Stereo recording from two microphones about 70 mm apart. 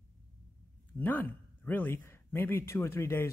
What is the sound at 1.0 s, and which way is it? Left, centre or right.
Speech, left.